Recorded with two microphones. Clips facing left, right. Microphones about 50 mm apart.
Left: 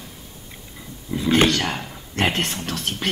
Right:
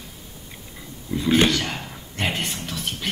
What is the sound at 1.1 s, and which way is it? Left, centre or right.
Speech, centre.